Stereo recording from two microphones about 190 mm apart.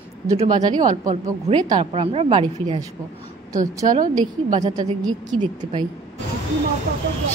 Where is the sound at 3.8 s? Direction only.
25° right (ahead or behind).